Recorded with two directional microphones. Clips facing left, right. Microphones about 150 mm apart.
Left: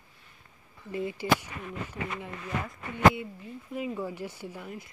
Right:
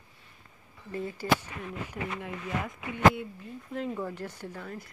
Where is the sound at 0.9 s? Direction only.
10° left (ahead or behind).